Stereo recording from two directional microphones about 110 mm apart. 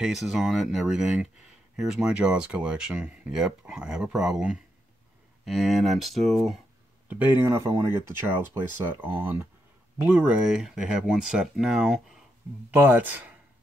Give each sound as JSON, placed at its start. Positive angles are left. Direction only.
{"t": 0.0, "sound": "speech", "side_deg": -5}
{"t": 7.1, "sound": "speech", "side_deg": -15}
{"t": 12.7, "sound": "speech", "side_deg": -15}